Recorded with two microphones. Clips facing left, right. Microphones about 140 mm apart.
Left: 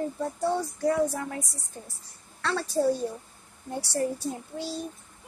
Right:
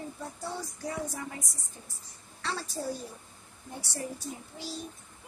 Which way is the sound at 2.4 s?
65° left (ahead or behind).